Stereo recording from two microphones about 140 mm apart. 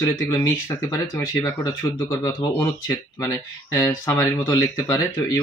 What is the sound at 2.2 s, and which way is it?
Speech, 25° left (ahead or behind).